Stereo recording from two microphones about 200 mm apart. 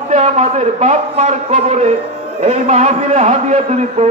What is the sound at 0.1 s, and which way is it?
A man's voice, 35° right (ahead or behind).